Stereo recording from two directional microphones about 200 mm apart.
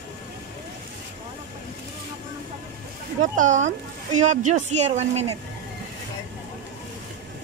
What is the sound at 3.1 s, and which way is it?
Speech, 40° right (ahead or behind).